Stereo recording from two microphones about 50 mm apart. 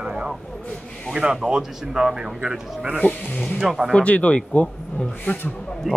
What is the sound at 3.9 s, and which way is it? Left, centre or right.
Speech, left.